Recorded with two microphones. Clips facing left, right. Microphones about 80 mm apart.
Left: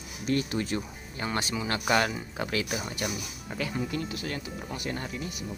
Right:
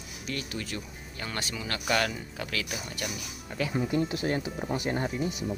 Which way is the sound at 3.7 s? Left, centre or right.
Right.